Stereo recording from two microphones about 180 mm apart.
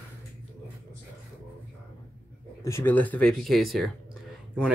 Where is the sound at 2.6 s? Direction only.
15° left (ahead or behind).